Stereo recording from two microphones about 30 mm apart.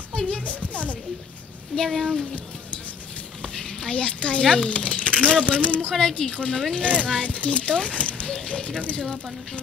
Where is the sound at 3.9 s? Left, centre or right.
Left.